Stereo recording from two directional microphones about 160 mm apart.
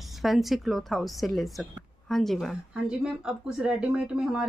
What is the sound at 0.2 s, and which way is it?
A woman's voice, centre (ahead or behind).